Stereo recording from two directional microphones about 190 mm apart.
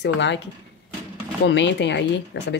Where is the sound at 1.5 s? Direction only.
70° left (ahead or behind).